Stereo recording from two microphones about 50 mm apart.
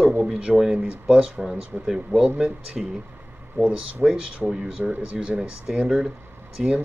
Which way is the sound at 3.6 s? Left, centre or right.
Right.